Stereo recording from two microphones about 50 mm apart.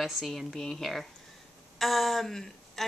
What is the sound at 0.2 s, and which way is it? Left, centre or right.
A woman's voice, centre.